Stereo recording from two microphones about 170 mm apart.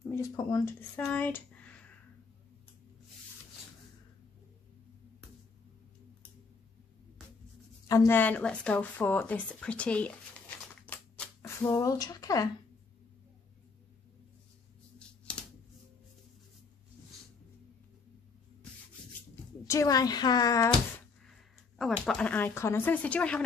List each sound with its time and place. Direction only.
0.0 s speech: 15° left (ahead or behind)
7.9 s speech: 15° left (ahead or behind)
10.9 s a sound: 10° left (ahead or behind)
15.0 s typewriter: 5° left (ahead or behind)
19.7 s speech: 20° left (ahead or behind)
21.3 s speech: centre (ahead or behind)